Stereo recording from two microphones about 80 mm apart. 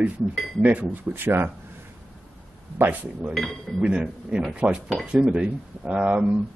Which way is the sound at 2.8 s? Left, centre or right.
Right.